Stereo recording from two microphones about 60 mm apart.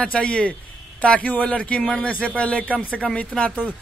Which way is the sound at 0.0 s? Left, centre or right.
Centre.